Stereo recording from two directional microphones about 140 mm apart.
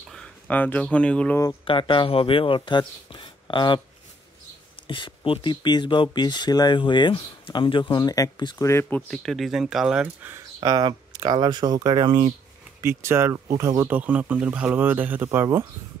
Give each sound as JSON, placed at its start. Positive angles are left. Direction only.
{"t": 0.1, "sound": "speech", "side_deg": 10}
{"t": 1.6, "sound": "speech", "side_deg": 40}
{"t": 4.8, "sound": "speech", "side_deg": 35}
{"t": 8.6, "sound": "speech", "side_deg": 20}
{"t": 9.1, "sound": "speech", "side_deg": 0}
{"t": 10.3, "sound": "speech", "side_deg": -25}
{"t": 12.8, "sound": "speech", "side_deg": -20}